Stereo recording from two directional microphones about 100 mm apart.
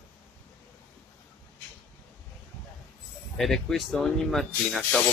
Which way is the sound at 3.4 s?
Centre (ahead or behind).